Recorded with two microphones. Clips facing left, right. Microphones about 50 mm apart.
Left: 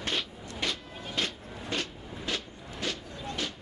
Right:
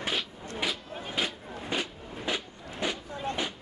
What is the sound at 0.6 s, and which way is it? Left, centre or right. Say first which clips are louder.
Vehicle: right 1 dB; centre.